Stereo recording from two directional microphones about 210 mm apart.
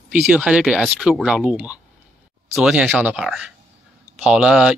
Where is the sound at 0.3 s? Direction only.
5° right (ahead or behind).